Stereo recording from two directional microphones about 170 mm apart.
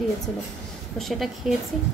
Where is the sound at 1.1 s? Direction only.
Centre (ahead or behind).